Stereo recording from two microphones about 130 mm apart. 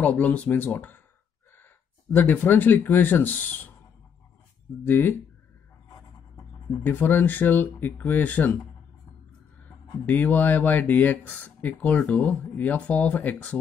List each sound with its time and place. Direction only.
0.0 s speech: 10° left (ahead or behind)
2.1 s speech: 15° left (ahead or behind)
4.8 s speech: 20° left (ahead or behind)
6.8 s speech: 15° left (ahead or behind)
10.0 s speech: 15° left (ahead or behind)